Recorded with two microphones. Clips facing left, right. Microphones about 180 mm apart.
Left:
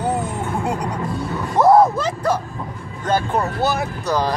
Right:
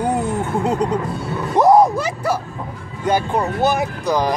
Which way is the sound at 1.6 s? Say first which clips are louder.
Even; 15° right (ahead or behind).